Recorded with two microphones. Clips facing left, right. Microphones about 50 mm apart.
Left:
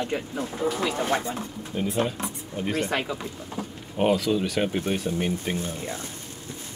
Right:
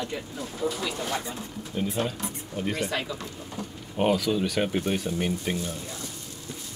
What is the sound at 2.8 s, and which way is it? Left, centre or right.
Speech, left.